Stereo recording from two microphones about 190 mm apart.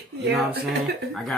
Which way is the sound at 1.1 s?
Centre (ahead or behind).